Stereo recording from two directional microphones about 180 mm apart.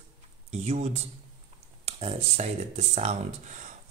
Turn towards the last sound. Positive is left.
turn(degrees=-40)  # may be behind; listen again after turning